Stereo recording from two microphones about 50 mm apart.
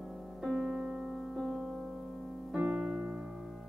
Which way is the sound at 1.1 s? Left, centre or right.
Centre.